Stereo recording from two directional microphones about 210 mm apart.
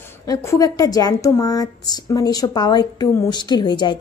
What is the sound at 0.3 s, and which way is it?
A woman's voice, 15° left (ahead or behind).